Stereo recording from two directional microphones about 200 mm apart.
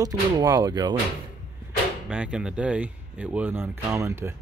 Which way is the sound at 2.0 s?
5° right (ahead or behind).